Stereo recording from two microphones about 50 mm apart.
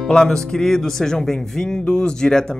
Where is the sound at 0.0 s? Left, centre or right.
Centre.